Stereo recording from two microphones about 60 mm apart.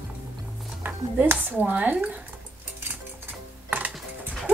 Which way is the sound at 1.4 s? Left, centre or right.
Right.